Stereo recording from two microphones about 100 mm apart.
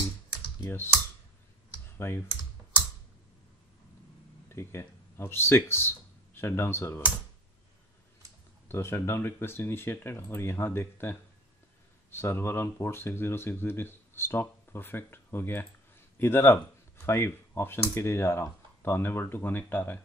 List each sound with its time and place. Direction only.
1.9 s speech: 25° left (ahead or behind)
4.5 s speech: 25° left (ahead or behind)
8.6 s speech: 25° left (ahead or behind)